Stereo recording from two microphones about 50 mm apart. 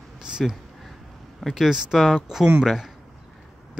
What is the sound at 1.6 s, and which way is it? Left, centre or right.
Speech, centre.